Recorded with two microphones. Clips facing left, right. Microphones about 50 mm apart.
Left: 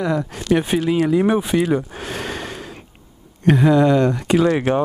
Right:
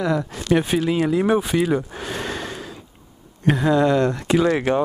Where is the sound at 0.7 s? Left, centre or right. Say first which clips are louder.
Left 2 dB; centre.